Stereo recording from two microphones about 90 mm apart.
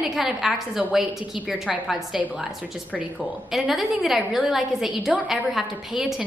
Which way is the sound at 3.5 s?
Centre (ahead or behind).